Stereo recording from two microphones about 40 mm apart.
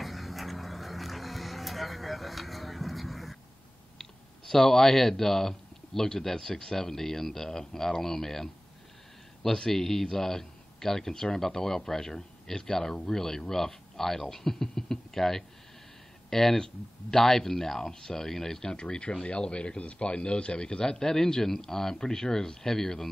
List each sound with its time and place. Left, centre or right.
0.0 s vehicle: centre
4.0 s speech: centre
21.0 s speech: centre